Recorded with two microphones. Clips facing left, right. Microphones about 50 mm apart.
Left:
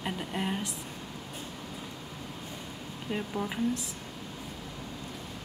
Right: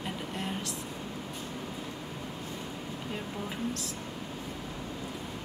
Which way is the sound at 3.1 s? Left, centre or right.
Centre.